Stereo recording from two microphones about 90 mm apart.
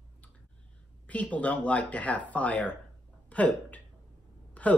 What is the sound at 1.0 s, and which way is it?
Speech, 15° left (ahead or behind).